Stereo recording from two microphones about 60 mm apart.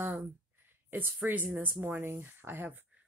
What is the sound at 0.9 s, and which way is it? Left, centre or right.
Speech, right.